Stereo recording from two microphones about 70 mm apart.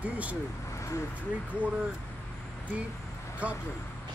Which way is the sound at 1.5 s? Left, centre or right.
Centre.